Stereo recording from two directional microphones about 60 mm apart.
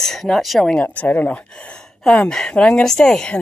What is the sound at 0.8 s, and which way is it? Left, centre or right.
Speech, left.